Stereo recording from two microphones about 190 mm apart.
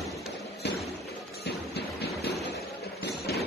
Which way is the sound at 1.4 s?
60° left (ahead or behind).